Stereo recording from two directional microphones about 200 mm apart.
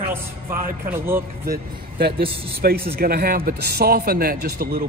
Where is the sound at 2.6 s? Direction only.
50° right (ahead or behind).